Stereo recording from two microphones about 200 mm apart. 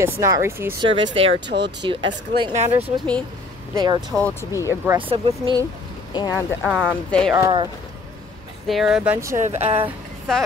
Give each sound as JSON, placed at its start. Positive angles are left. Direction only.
{"t": 0.0, "sound": "speech", "side_deg": -15}
{"t": 0.7, "sound": "speech", "side_deg": -25}
{"t": 1.5, "sound": "speech", "side_deg": -60}
{"t": 1.9, "sound": "speech", "side_deg": -25}
{"t": 3.7, "sound": "speech", "side_deg": -20}
{"t": 4.1, "sound": "speech", "side_deg": 10}
{"t": 5.1, "sound": "speech", "side_deg": -25}
{"t": 6.1, "sound": "speech", "side_deg": 20}
{"t": 6.6, "sound": "speech", "side_deg": -5}
{"t": 7.1, "sound": "speech", "side_deg": 5}
{"t": 7.3, "sound": "speech", "side_deg": -20}
{"t": 8.6, "sound": "speech", "side_deg": 0}
{"t": 9.4, "sound": "speech", "side_deg": -35}
{"t": 9.8, "sound": "a sound", "side_deg": 0}